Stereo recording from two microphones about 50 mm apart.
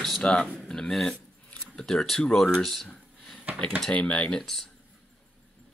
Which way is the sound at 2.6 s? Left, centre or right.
Centre.